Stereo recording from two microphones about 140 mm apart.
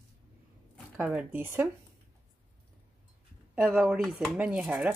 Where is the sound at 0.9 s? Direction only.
10° right (ahead or behind).